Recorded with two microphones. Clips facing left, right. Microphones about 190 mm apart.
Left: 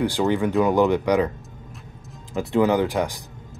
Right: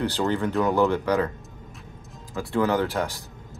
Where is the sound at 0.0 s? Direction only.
15° left (ahead or behind).